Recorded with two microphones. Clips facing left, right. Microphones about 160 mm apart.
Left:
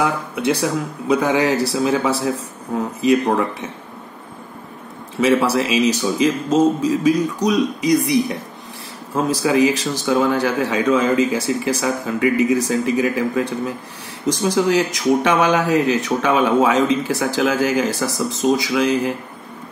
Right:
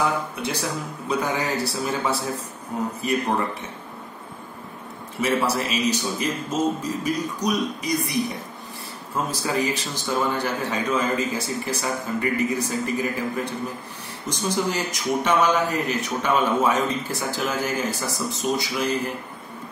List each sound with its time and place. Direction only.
1.0 s speech: 90° left
5.2 s speech: 90° left